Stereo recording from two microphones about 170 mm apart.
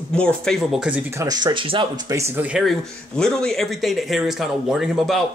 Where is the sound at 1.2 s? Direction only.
25° right (ahead or behind).